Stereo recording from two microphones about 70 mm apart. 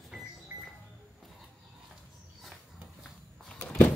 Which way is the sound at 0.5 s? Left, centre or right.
Right.